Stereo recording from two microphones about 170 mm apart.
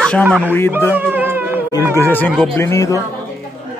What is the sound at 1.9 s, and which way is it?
Speech, 10° left (ahead or behind).